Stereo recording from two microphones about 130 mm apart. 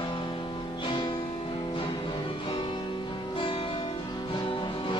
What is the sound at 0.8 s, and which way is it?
Music, 40° left (ahead or behind).